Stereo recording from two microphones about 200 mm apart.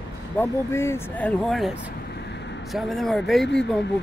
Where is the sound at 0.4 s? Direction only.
15° left (ahead or behind).